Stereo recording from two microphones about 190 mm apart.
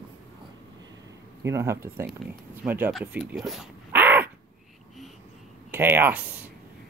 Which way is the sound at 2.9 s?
5° right (ahead or behind).